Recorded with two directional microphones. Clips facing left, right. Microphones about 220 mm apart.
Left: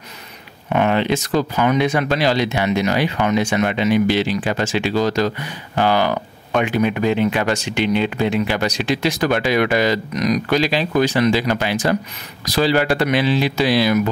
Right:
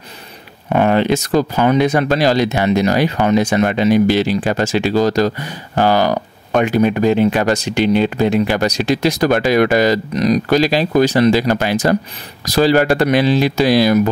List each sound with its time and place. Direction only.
0.7 s speech: 40° right (ahead or behind)